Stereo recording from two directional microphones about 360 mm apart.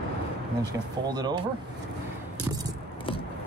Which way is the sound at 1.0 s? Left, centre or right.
Centre.